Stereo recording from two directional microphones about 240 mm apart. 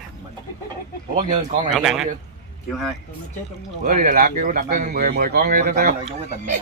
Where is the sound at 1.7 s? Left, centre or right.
Centre.